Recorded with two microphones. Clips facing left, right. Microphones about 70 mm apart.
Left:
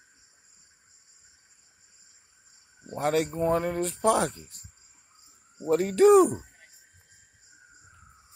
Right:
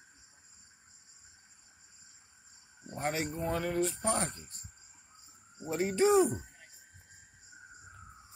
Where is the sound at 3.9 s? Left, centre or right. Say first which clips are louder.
Left 9 dB; left.